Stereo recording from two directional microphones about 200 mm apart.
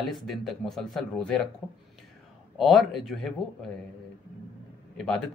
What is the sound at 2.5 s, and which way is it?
Speech, centre (ahead or behind).